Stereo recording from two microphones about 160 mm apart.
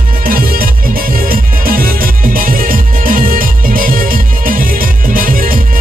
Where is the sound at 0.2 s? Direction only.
65° right (ahead or behind).